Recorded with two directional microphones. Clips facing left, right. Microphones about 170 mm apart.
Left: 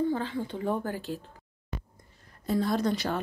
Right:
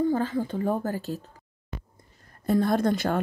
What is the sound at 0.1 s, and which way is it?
Speech, 45° right (ahead or behind).